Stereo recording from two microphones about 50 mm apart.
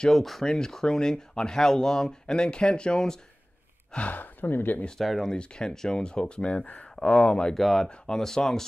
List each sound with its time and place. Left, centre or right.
0.0 s speech: centre
3.9 s speech: left
4.9 s speech: centre
5.3 s speech: centre
7.0 s speech: left
7.5 s speech: centre